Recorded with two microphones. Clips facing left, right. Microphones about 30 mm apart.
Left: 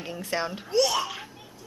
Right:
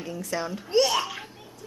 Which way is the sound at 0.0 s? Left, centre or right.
Left.